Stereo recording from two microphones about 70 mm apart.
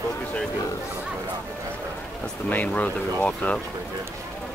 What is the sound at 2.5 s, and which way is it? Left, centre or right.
Speech, left.